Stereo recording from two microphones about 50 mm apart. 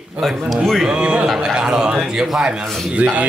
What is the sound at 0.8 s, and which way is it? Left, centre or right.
Speech, centre.